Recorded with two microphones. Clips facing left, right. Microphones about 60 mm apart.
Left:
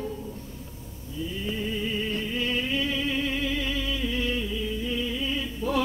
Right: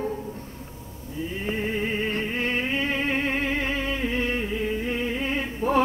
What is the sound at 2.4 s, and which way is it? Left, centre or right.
Music, right.